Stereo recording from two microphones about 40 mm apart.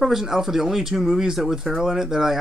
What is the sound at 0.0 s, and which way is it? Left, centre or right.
Speech, centre.